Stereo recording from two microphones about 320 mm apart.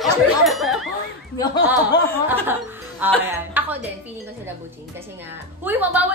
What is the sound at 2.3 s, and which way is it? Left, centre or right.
Music, centre.